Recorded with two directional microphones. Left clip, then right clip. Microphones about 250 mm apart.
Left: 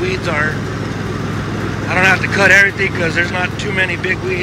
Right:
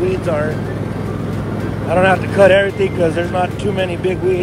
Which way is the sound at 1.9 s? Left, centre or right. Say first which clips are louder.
Left 1 dB; centre.